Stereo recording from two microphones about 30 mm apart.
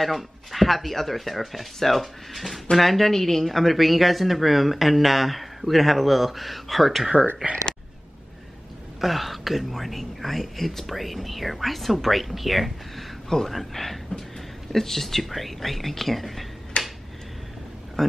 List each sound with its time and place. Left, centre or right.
0.0 s speech: centre
9.0 s speech: centre
16.8 s a sound: left
18.0 s speech: centre